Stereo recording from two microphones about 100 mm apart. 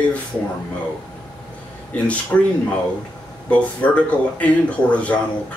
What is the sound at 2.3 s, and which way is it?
Speech, 15° left (ahead or behind).